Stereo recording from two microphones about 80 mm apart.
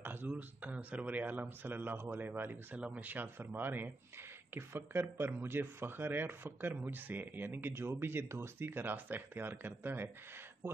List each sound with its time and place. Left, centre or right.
0.0 s speech: right
10.6 s speech: right